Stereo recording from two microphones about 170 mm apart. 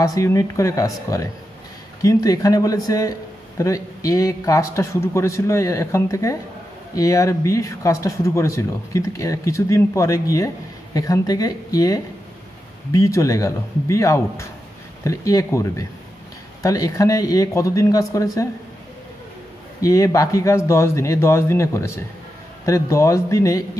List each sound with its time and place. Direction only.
0.0 s a man's voice: 20° left (ahead or behind)
19.8 s speech: 20° left (ahead or behind)